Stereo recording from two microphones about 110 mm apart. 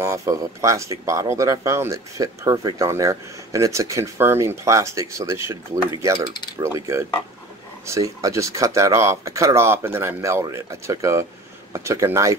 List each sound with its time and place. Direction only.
0.0 s speech: 25° right (ahead or behind)
6.6 s speech: 25° right (ahead or behind)